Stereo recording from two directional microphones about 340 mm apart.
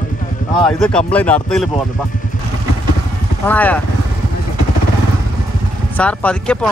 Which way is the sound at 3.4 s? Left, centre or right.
Centre.